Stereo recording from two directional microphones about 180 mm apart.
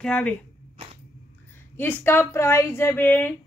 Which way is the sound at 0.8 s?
30° right (ahead or behind).